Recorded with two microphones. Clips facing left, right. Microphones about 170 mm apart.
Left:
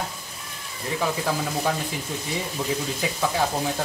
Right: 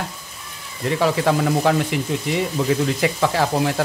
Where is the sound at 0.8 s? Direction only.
75° right (ahead or behind).